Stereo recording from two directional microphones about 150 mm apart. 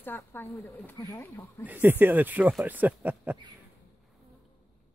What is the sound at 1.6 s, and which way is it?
Speech, 15° right (ahead or behind).